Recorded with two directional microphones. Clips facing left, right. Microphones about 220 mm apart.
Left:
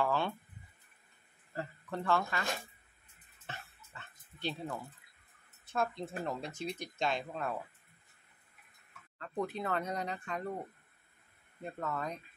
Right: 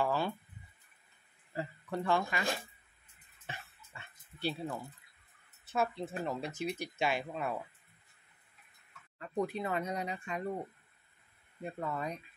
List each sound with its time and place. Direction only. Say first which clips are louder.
0.0 s speech: even; 5° right (ahead or behind)
1.5 s speech: right 2 dB; 15° right (ahead or behind)
3.4 s dog: even; 10° right (ahead or behind)
5.7 s speech: right 1 dB; 5° right (ahead or behind)
9.2 s speech: right 2 dB; 10° right (ahead or behind)
11.6 s speech: right 1 dB; 10° right (ahead or behind)